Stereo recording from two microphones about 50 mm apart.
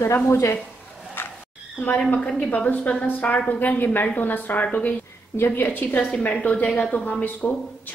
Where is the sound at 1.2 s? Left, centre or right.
Left.